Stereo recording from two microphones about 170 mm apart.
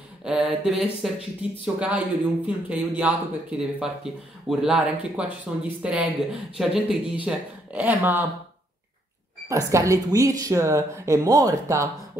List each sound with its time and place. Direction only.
0.2 s a sound: 5° right (ahead or behind)
1.4 s speech: 5° right (ahead or behind)
9.7 s speech: 20° right (ahead or behind)